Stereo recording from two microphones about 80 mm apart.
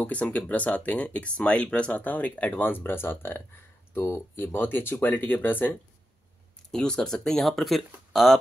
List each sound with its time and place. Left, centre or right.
0.0 s speech: centre
6.7 s speech: centre